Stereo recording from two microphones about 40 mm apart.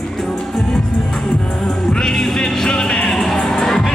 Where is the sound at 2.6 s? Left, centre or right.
Left.